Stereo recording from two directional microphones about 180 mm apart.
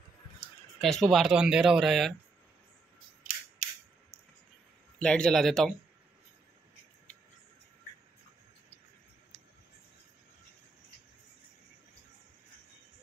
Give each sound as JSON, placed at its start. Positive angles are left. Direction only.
{"t": 0.7, "sound": "speech", "side_deg": 0}
{"t": 4.9, "sound": "speech", "side_deg": 5}